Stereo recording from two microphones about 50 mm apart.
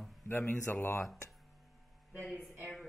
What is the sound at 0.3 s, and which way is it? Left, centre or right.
Speech, left.